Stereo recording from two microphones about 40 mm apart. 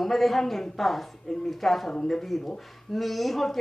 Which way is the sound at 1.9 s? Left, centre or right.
Centre.